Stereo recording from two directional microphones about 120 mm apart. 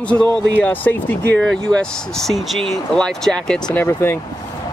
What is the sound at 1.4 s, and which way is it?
Speech, 5° left (ahead or behind).